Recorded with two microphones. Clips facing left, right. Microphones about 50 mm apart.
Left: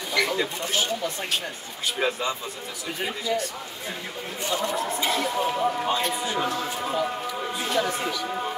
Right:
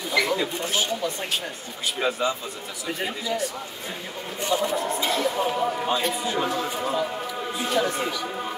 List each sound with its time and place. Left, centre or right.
0.1 s speech: centre
4.5 s speech: centre